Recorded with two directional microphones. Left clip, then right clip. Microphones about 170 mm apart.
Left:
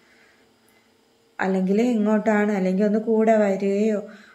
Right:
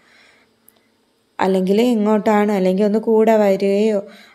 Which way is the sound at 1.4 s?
40° right (ahead or behind).